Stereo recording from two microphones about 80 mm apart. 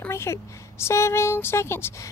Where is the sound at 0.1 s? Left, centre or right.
Left.